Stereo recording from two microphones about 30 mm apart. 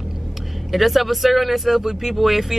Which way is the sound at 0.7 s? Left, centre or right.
Centre.